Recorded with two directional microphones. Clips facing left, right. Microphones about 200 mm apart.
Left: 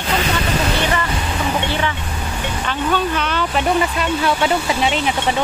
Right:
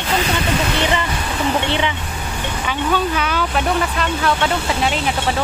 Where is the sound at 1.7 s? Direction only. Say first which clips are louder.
Right 1 dB; 20° right (ahead or behind).